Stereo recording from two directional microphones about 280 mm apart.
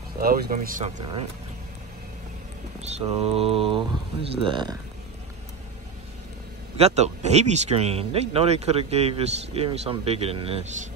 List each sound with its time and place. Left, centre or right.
0.2 s speech: right
2.8 s speech: right
6.8 s speech: right